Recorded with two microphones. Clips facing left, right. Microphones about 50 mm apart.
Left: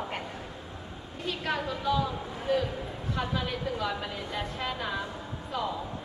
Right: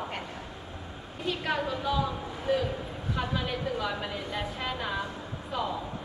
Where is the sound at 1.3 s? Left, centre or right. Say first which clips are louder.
Right 2 dB; centre.